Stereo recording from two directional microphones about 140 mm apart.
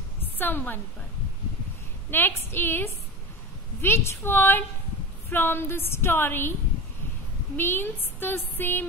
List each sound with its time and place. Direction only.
0.2 s a sound: 15° left (ahead or behind)
2.0 s speech: 15° left (ahead or behind)
7.5 s speech: 15° left (ahead or behind)